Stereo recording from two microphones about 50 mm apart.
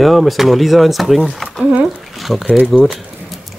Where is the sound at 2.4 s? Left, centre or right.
Right.